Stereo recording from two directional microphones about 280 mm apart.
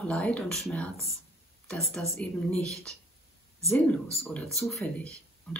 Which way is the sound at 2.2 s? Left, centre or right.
Centre.